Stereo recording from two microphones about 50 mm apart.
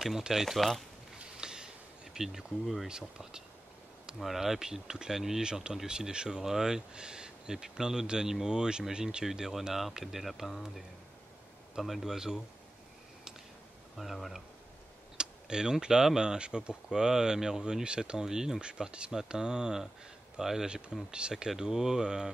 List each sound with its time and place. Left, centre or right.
0.2 s speech: centre
1.4 s a sound: centre
2.1 s speech: centre
11.8 s speech: centre
13.9 s speech: centre
15.1 s speech: centre